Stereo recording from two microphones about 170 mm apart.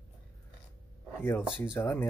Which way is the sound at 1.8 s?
10° left (ahead or behind).